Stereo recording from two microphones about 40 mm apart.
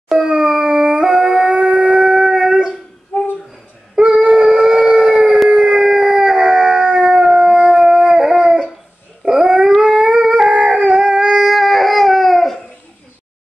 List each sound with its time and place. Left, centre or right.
0.2 s howl: centre
4.0 s a sound: right
4.4 s howl: centre
8.4 s dog: centre
10.5 s howl: right
11.4 s dog: centre